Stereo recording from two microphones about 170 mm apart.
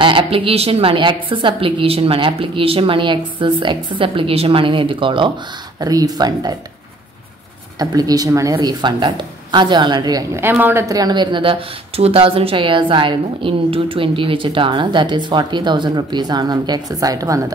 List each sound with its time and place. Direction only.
0.0 s a woman's voice: 30° right (ahead or behind)
7.8 s a woman's voice: 20° right (ahead or behind)